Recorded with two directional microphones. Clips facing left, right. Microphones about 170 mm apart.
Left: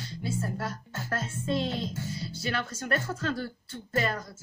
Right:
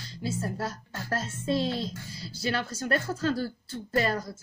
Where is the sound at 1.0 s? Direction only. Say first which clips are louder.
Right 2 dB; 35° right (ahead or behind).